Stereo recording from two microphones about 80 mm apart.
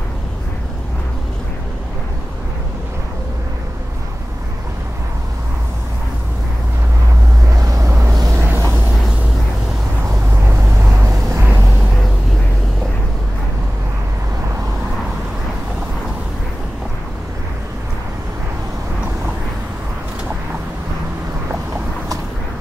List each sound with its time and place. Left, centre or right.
7.6 s vehicle: right
8.3 s vehicle: right
10.8 s vehicle: right